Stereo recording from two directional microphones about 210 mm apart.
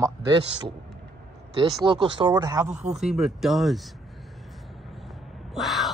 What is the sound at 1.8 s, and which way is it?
Speech, 20° right (ahead or behind).